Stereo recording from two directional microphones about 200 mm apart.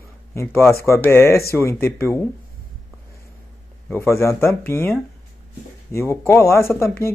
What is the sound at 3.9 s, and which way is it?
Speech, 10° left (ahead or behind).